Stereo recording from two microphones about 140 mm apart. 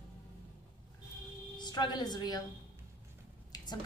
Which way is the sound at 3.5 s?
30° left (ahead or behind).